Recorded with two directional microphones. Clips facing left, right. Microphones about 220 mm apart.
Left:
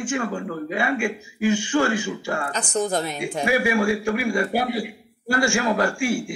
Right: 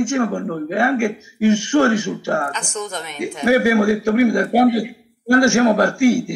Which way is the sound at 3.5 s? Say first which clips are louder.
Right 7 dB; 40° right (ahead or behind).